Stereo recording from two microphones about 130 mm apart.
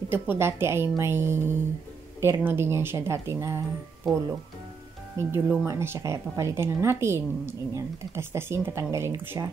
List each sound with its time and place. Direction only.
0.1 s speech: 15° right (ahead or behind)
5.1 s speech: 20° right (ahead or behind)